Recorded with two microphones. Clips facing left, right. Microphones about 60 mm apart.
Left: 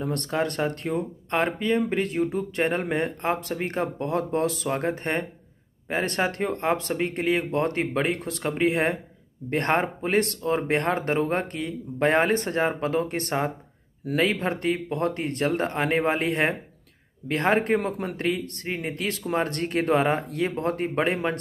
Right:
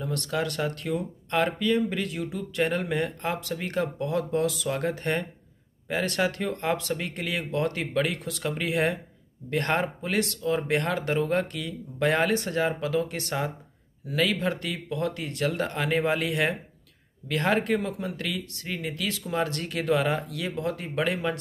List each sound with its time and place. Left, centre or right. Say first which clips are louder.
0.0 s speech: left 3 dB; left
17.8 s speech: left 5 dB; left